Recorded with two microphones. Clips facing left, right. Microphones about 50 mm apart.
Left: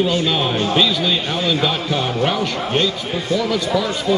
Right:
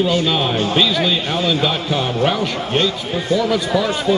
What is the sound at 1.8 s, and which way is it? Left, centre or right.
Speech, right.